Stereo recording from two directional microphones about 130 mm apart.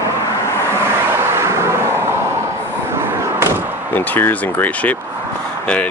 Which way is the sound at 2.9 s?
20° right (ahead or behind).